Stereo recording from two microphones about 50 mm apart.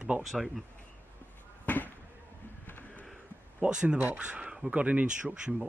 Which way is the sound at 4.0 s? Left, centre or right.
Right.